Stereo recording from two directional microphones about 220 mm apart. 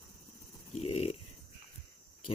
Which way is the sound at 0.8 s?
30° left (ahead or behind).